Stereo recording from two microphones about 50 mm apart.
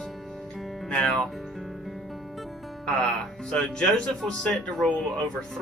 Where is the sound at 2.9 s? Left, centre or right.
Centre.